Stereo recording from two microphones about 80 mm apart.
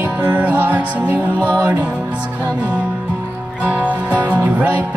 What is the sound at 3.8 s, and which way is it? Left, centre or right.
Music, centre.